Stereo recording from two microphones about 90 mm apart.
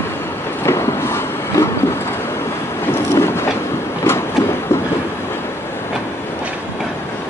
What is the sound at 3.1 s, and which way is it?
Train, 30° left (ahead or behind).